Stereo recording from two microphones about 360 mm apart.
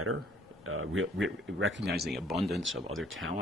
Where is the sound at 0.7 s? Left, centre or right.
Right.